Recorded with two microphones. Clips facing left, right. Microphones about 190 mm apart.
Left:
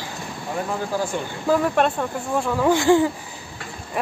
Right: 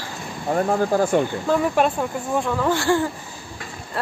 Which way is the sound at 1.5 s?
5° right (ahead or behind).